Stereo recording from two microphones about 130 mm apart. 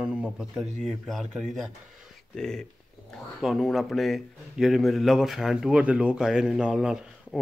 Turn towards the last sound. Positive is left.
turn(degrees=-5)  # may be behind; listen again after turning